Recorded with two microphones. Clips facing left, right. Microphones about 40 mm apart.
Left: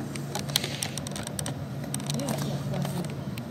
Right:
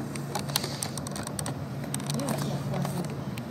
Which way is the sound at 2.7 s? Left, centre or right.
Left.